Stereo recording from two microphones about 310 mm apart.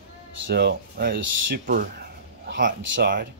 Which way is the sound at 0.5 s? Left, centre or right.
Right.